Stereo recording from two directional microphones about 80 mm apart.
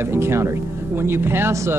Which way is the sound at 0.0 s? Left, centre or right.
Right.